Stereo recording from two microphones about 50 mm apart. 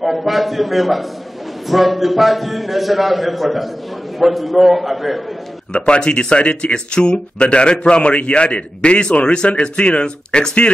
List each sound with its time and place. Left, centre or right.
0.0 s a man's voice: centre
5.7 s speech: left